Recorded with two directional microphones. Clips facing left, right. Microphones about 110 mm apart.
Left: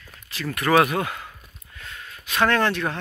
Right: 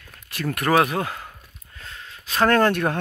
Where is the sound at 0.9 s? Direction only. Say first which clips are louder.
Even; 35° right (ahead or behind).